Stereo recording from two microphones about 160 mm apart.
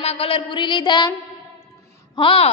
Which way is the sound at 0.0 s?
40° left (ahead or behind).